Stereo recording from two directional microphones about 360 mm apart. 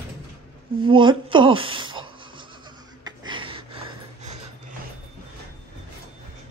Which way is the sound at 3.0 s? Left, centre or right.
Centre.